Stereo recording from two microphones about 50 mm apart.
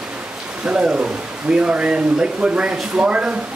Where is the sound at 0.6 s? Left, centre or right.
Centre.